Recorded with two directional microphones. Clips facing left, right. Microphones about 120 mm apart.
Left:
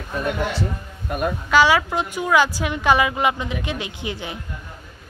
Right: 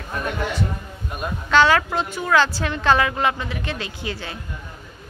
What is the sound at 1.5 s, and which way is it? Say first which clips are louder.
A woman's voice: even; 10° left (ahead or behind).